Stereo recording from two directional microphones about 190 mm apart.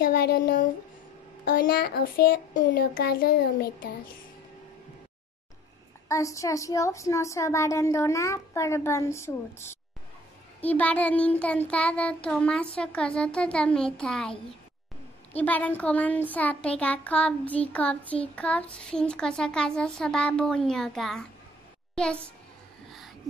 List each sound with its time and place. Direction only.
0.0 s a woman's voice: 55° left (ahead or behind)
6.0 s child singing: 15° left (ahead or behind)
15.3 s child singing: 10° left (ahead or behind)
21.9 s a woman's voice: 5° left (ahead or behind)
22.8 s a sound: centre (ahead or behind)